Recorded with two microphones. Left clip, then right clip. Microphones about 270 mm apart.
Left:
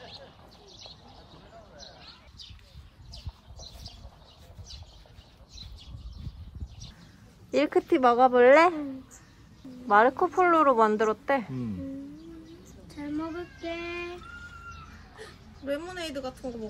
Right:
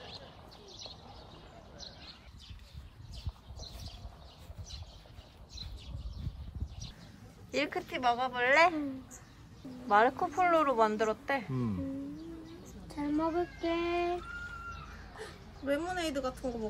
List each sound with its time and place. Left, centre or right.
7.5 s a woman's voice: centre
9.8 s speech: centre
12.9 s speech: right
15.1 s speech: centre